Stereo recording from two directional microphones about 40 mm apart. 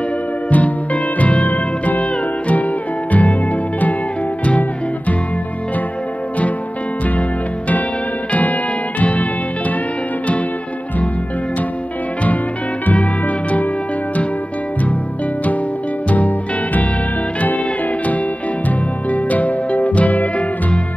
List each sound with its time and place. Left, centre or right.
0.5 s music: left
4.5 s music: left
8.3 s music: left
12.8 s music: left
16.1 s music: left
18.7 s music: left